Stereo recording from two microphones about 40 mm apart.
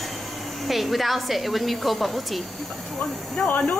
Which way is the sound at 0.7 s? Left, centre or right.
Centre.